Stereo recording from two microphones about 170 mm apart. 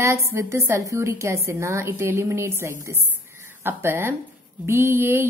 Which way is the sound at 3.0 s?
15° right (ahead or behind).